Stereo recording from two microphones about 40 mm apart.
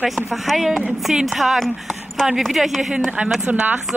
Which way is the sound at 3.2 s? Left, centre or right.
Right.